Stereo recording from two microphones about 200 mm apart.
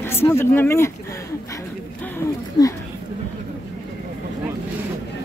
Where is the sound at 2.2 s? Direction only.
15° left (ahead or behind).